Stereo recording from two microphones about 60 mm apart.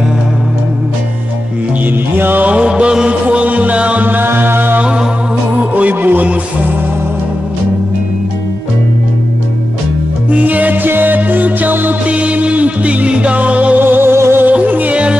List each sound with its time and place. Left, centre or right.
2.1 s music: right
2.5 s chant: centre; by 4.8 s right
5.6 s music: right
10.3 s music: right
13.7 s music: right
14.1 s music: right
14.4 s music: right